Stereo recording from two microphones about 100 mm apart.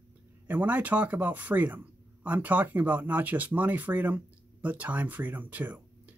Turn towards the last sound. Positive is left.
turn(degrees=-15)  # may be behind; listen again after turning